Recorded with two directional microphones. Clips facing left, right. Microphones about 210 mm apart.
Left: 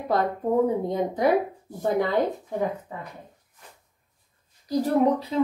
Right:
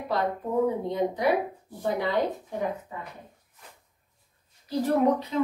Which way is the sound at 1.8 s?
50° left (ahead or behind).